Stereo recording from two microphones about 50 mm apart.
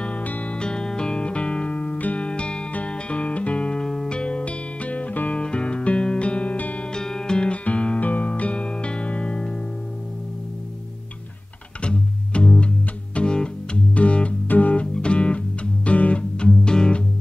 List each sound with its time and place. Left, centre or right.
0.0 s music: left
0.6 s music: centre
11.8 s music: left